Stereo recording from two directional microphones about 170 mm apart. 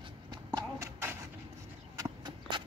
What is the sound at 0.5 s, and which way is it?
Horse, 20° right (ahead or behind).